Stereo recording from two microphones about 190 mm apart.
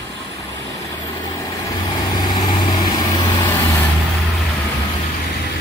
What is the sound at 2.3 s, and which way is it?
Vehicle, 20° left (ahead or behind).